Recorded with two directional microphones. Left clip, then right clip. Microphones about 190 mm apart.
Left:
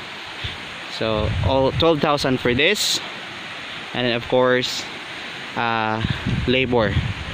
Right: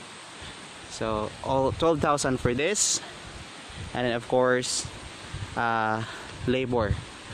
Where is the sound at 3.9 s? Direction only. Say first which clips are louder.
Left 5 dB; 10° right (ahead or behind).